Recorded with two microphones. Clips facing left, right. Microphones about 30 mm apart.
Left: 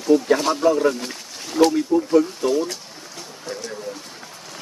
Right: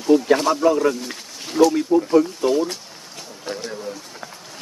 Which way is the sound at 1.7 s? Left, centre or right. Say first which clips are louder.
Right 1 dB; centre.